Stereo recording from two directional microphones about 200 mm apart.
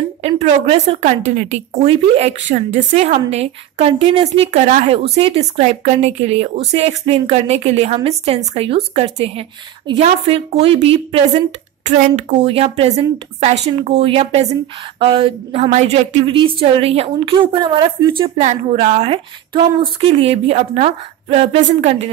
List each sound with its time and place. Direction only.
0.2 s a woman's voice: 30° right (ahead or behind)
18.4 s a woman's voice: 35° right (ahead or behind)